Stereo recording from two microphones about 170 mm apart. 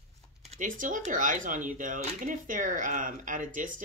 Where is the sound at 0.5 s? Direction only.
50° right (ahead or behind).